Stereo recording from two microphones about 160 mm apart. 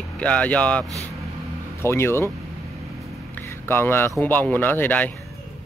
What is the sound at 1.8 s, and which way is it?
Speech, 15° left (ahead or behind).